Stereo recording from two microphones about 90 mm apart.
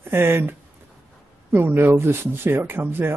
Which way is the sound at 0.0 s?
25° right (ahead or behind).